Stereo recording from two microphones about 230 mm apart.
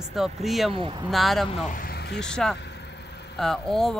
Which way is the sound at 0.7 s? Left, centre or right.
Right.